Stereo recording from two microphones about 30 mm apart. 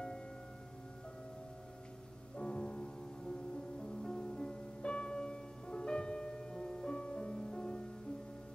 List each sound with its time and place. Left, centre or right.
2.3 s music: left